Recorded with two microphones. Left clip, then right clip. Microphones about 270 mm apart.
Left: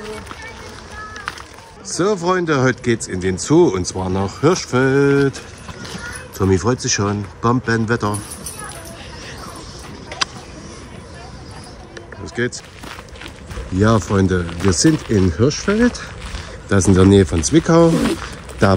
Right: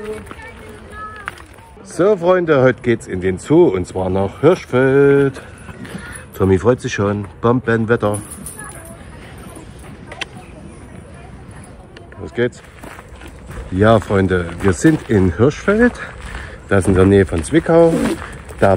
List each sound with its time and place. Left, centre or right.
2.0 s speech: centre
10.1 s a sound: left
13.7 s speech: centre
16.6 s speech: centre
17.9 s speech: centre